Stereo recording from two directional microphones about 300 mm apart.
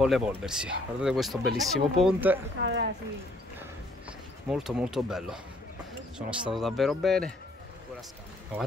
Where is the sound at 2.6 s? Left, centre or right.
Right.